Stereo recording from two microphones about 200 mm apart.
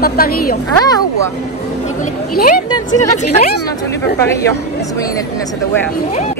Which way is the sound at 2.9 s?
35° left (ahead or behind).